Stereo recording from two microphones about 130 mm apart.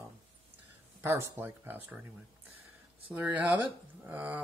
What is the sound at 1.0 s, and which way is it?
Speech, 15° right (ahead or behind).